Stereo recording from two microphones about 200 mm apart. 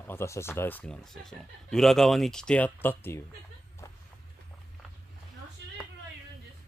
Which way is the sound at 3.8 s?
15° left (ahead or behind).